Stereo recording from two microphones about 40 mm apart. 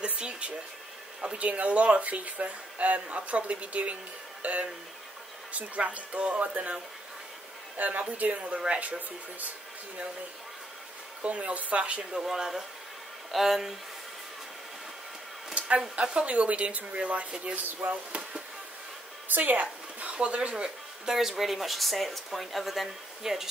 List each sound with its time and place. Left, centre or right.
0.0 s a sound: right
1.3 s speech: right
7.7 s a woman's voice: right
11.2 s speech: right
12.1 s speech: centre
16.0 s speech: right
17.6 s speech: right
19.3 s speech: right
19.6 s speech: right; by 23.5 s centre